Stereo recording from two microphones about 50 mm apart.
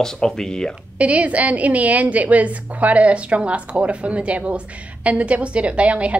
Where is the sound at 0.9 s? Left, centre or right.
Right.